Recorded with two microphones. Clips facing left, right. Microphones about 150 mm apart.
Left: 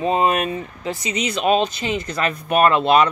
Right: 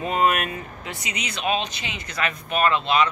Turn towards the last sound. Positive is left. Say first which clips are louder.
# left 6 dB
turn(degrees=50)  # may be behind; listen again after turning